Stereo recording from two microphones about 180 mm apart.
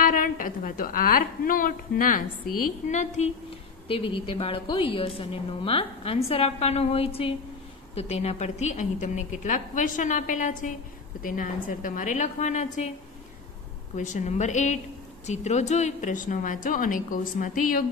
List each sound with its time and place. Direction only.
0.0 s a woman's voice: 50° left (ahead or behind)
3.8 s a woman's voice: 30° left (ahead or behind)
13.9 s a woman's voice: 40° left (ahead or behind)